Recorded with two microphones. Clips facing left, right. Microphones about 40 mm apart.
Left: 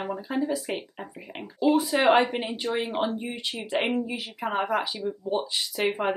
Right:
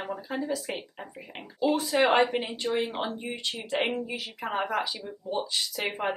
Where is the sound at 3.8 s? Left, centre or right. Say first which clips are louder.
Left 3 dB; centre.